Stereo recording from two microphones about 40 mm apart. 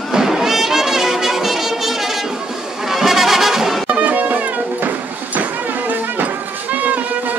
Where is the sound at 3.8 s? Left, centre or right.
Right.